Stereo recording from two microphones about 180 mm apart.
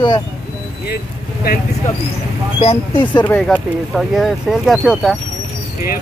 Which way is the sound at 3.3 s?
10° left (ahead or behind).